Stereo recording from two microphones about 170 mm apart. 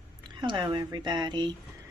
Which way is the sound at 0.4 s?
25° right (ahead or behind).